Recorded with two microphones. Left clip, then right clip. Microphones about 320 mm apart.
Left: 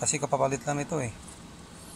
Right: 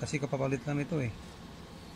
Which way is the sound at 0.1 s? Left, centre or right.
Left.